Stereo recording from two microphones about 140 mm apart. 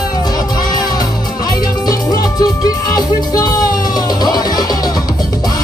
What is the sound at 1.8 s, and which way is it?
Music, 25° left (ahead or behind).